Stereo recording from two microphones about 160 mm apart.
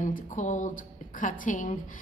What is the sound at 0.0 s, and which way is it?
Speech, 50° left (ahead or behind).